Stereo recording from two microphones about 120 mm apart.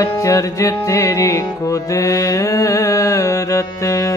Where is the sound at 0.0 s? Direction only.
25° left (ahead or behind).